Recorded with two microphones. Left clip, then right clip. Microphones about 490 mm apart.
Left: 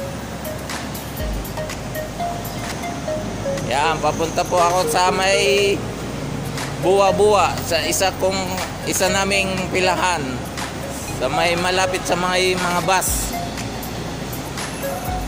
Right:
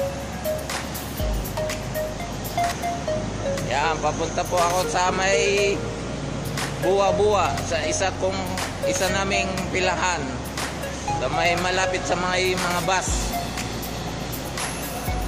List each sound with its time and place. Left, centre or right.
3.6 s speech: right
6.9 s speech: right
11.3 s speech: right